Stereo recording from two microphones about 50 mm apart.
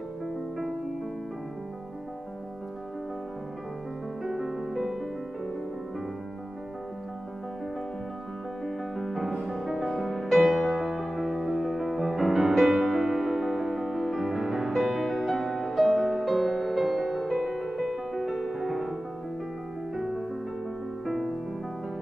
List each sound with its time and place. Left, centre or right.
4.2 s music: centre
8.6 s music: centre
20.0 s music: centre